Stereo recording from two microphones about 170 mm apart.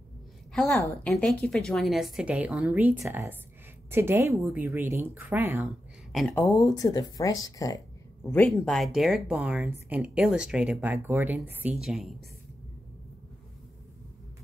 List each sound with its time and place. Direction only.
0.5 s a woman's voice: 5° left (ahead or behind)
6.3 s speech: 20° left (ahead or behind)
8.7 s speech: centre (ahead or behind)